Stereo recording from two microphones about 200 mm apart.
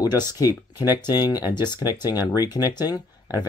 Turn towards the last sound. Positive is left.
turn(degrees=20)  # may be behind; listen again after turning